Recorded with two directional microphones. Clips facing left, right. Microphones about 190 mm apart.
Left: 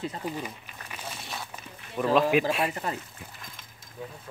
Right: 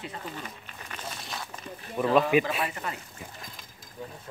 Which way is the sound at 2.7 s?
35° left (ahead or behind).